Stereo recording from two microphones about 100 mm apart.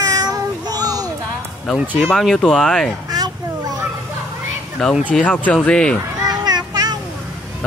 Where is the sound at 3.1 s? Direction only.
40° right (ahead or behind).